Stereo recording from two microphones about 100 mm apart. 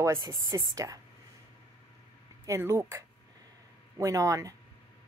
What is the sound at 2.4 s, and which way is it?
A woman's voice, 25° right (ahead or behind).